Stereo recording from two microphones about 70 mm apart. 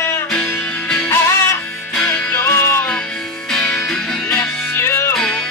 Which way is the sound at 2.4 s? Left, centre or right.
Left.